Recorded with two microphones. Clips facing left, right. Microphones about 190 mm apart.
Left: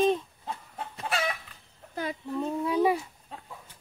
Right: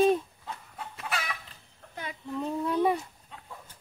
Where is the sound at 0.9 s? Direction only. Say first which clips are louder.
Left 5 dB; 30° left (ahead or behind).